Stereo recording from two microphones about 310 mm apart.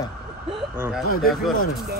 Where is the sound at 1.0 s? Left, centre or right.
Left.